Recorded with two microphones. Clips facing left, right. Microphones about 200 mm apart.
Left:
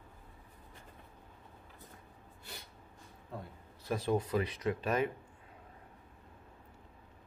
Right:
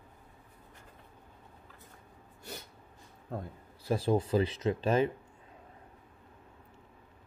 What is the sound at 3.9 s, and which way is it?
Speech, 30° right (ahead or behind).